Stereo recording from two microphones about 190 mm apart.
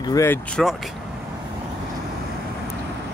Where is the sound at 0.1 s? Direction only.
15° left (ahead or behind).